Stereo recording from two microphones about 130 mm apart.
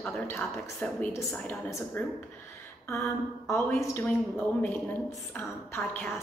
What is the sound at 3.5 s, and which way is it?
Speech, 15° left (ahead or behind).